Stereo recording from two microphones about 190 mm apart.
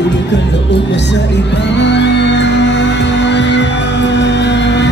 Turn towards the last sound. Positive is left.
turn(degrees=70)  # may be behind; listen again after turning